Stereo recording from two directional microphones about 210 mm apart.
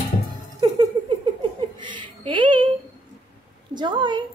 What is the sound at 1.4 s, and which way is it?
Giggle, 25° right (ahead or behind).